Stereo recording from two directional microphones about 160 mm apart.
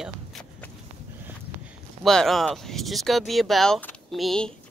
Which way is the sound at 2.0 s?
Centre (ahead or behind).